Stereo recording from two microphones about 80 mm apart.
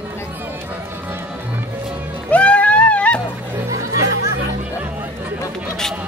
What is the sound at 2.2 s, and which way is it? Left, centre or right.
Music, centre.